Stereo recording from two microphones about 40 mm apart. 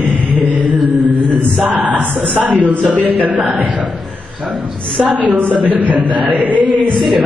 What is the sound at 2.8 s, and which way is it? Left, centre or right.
Speech, right.